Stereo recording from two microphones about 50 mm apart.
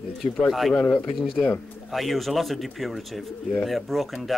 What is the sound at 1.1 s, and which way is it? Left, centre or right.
Speech, centre.